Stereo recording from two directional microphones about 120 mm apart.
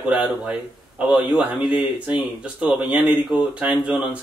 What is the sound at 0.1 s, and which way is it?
Speech, 10° right (ahead or behind).